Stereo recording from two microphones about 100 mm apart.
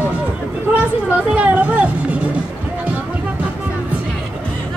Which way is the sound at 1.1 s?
15° right (ahead or behind).